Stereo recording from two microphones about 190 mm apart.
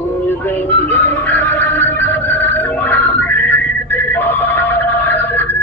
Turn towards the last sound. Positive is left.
turn(degrees=10)  # may be behind; listen again after turning